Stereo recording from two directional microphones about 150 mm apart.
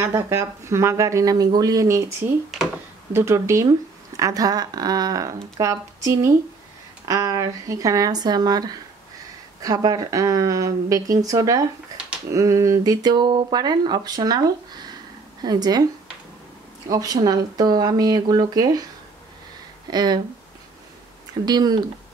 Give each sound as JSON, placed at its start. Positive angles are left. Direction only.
{"t": 0.0, "sound": "speech", "side_deg": -15}
{"t": 16.9, "sound": "speech", "side_deg": -25}
{"t": 19.9, "sound": "speech", "side_deg": -25}
{"t": 21.5, "sound": "speech", "side_deg": -25}